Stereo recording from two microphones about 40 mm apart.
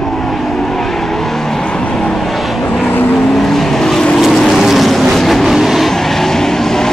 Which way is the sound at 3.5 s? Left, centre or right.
Centre.